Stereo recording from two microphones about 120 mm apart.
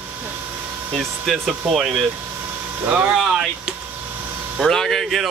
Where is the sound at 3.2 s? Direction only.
Centre (ahead or behind).